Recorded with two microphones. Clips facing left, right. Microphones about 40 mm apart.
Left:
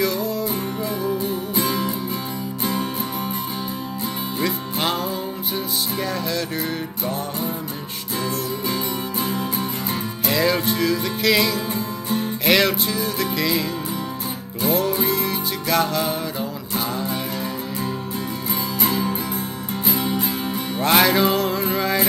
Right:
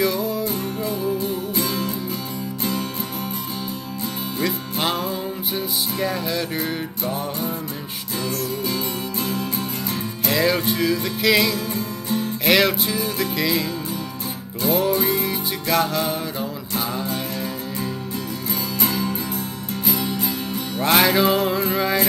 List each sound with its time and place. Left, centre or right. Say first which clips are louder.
0.0 s music: right 1 dB; centre
1.7 s music: left 2 dB; left
4.4 s music: even; centre
9.2 s music: left 1 dB; left
10.2 s music: even; centre
11.7 s music: left 1 dB; centre
12.4 s music: even; centre
18.5 s music: left 1 dB; centre
19.8 s music: left 1 dB; left
20.8 s music: even; centre